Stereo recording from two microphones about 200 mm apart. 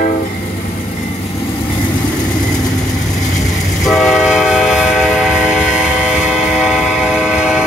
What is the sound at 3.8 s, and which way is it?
Train, centre (ahead or behind).